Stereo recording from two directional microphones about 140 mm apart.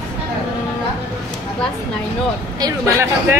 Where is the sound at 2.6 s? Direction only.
20° right (ahead or behind).